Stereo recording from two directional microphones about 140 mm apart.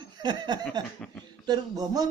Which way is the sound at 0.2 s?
30° right (ahead or behind).